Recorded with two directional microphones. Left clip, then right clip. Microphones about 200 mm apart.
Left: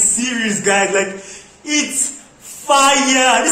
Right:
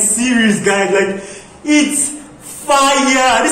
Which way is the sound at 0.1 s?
10° left (ahead or behind).